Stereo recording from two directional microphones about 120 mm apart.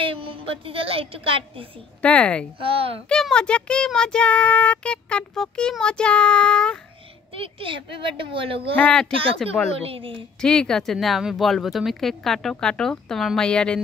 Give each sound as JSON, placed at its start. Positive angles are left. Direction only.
{"t": 0.0, "sound": "a woman's voice", "side_deg": -50}
{"t": 2.0, "sound": "child singing", "side_deg": 10}
{"t": 2.6, "sound": "a woman's voice", "side_deg": -50}
{"t": 3.1, "sound": "child singing", "side_deg": 5}
{"t": 7.3, "sound": "a woman's voice", "side_deg": -50}
{"t": 8.7, "sound": "child singing", "side_deg": 10}
{"t": 9.8, "sound": "a woman's voice", "side_deg": -50}
{"t": 10.4, "sound": "speech", "side_deg": 5}